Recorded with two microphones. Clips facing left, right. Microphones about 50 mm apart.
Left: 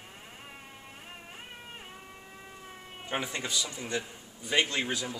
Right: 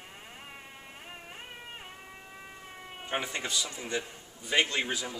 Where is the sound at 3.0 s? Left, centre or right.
Centre.